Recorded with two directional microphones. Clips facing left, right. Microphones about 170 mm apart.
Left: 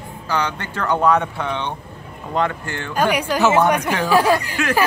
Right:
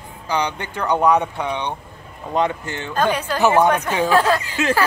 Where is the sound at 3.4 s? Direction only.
15° right (ahead or behind).